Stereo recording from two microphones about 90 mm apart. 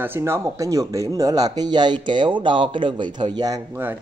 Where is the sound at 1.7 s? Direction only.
60° right (ahead or behind).